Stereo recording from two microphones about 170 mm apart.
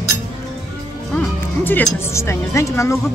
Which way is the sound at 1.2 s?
10° left (ahead or behind).